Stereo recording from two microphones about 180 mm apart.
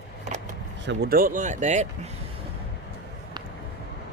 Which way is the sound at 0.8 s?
75° right (ahead or behind).